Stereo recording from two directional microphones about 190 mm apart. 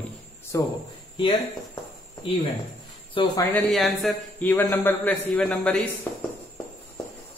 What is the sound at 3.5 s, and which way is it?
Speech, 5° left (ahead or behind).